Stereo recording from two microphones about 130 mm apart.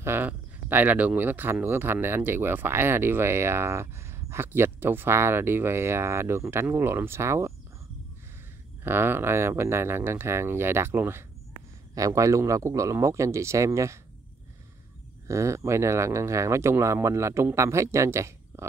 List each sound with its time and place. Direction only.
0.0 s speech: 15° right (ahead or behind)
8.8 s speech: 15° right (ahead or behind)
15.2 s speech: 25° right (ahead or behind)